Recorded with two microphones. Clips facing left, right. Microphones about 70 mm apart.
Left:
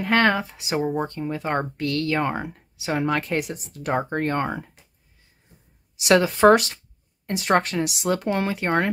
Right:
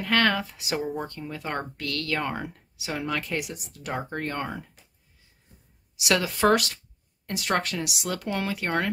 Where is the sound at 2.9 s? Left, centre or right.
Left.